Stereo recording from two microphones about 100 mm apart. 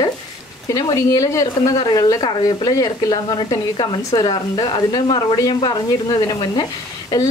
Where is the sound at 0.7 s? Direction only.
35° left (ahead or behind).